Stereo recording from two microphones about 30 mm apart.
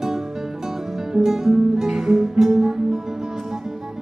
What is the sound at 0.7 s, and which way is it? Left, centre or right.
Music, centre.